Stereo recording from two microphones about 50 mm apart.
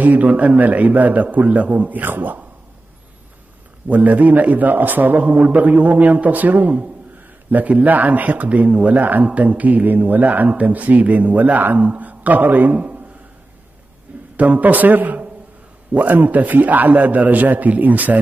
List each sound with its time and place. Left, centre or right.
0.0 s speech: right
3.8 s speech: right
14.3 s a man's voice: right